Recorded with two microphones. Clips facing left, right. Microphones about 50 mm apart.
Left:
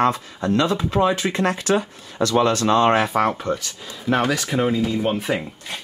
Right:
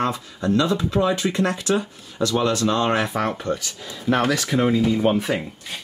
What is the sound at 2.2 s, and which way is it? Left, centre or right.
Speech, left.